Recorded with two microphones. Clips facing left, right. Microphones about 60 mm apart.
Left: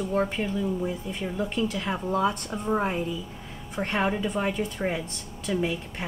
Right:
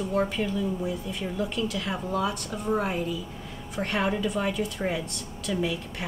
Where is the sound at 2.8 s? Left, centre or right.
Centre.